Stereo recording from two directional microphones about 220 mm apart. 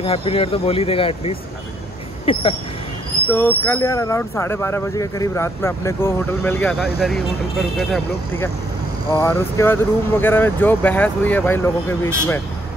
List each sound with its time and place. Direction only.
0.0 s speech: 25° left (ahead or behind)
3.3 s speech: 10° left (ahead or behind)
9.1 s speech: 10° left (ahead or behind)